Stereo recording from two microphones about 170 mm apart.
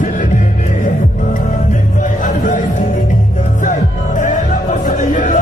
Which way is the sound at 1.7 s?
50° left (ahead or behind).